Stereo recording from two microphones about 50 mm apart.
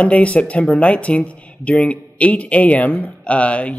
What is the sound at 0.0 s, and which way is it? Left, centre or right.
Speech, left.